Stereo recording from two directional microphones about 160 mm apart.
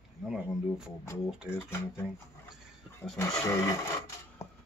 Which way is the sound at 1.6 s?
15° left (ahead or behind).